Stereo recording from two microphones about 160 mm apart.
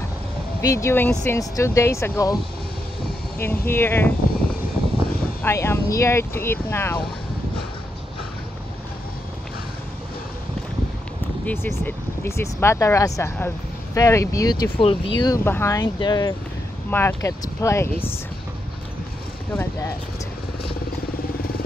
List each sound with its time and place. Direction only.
0.6 s speech: 20° left (ahead or behind)
3.3 s speech: 15° left (ahead or behind)
5.4 s speech: 15° left (ahead or behind)
11.4 s speech: 15° left (ahead or behind); by 15.3 s 30° left (ahead or behind)
15.3 s speech: 15° left (ahead or behind)
19.5 s speech: 15° left (ahead or behind)
21.4 s vehicle: 70° left (ahead or behind)